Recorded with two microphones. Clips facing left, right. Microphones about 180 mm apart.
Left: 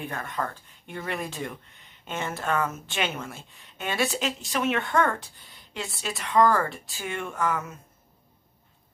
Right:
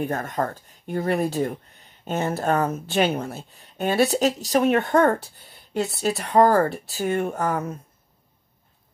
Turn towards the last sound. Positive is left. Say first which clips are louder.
# right 4 dB
turn(degrees=-40)  # may be behind; listen again after turning